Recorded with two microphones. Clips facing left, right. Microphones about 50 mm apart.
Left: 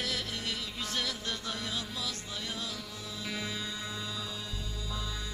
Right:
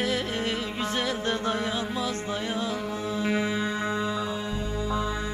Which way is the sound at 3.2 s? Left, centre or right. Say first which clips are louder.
Right 10 dB; right.